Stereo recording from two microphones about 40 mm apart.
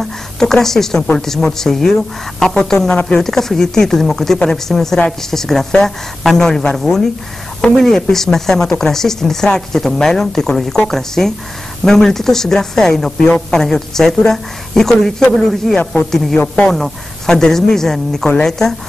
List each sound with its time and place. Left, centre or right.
0.0 s a woman's voice: centre
16.3 s a man's voice: left
17.3 s a woman's voice: centre